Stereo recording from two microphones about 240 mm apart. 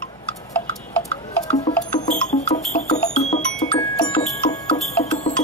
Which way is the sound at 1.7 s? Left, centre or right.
Left.